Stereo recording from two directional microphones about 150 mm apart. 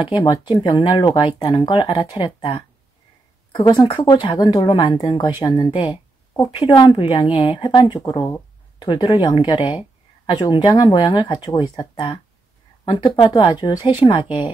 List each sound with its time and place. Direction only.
0.0 s speech: 30° left (ahead or behind)
6.3 s speech: 20° left (ahead or behind)
6.7 s speech: 35° left (ahead or behind)